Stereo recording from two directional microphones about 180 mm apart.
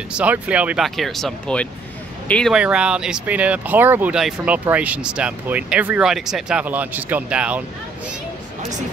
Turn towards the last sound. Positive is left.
turn(degrees=-5)  # may be behind; listen again after turning